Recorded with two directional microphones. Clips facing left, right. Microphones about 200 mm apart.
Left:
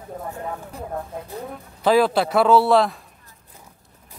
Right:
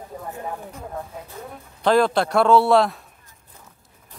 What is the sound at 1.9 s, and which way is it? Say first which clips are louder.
Speech: left 1 dB; 5° left (ahead or behind).